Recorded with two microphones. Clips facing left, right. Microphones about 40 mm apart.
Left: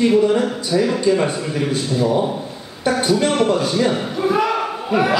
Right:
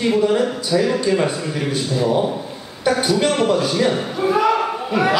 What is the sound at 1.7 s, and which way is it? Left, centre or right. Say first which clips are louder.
Speech: even; centre.